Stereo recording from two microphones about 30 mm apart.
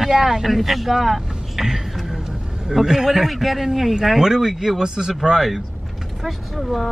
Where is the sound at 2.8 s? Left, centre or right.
Centre.